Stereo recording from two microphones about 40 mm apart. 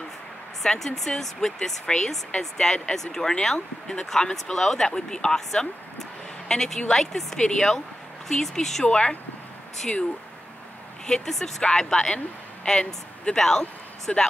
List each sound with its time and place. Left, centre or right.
0.7 s speech: centre
7.3 s speech: centre
8.8 s speech: left
11.1 s speech: centre